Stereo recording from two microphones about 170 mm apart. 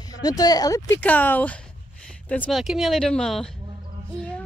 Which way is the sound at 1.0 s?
10° left (ahead or behind).